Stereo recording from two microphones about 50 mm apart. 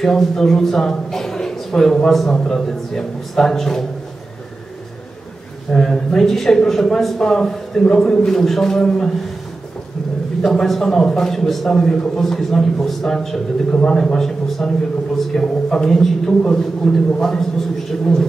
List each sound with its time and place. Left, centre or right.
0.0 s a man's voice: centre
5.8 s a man's voice: centre
7.8 s a man's voice: centre
10.4 s a man's voice: centre
13.7 s a man's voice: centre